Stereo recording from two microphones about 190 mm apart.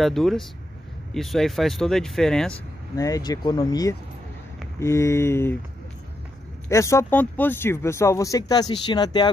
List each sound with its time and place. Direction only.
0.0 s speech: centre (ahead or behind)
3.0 s speech: 20° left (ahead or behind)
6.7 s speech: 15° left (ahead or behind)